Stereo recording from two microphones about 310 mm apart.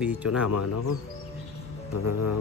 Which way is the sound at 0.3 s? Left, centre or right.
Left.